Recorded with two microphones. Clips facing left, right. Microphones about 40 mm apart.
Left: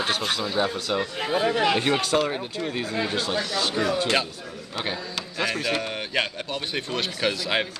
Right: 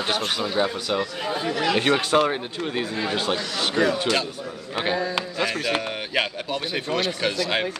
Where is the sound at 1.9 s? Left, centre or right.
Centre.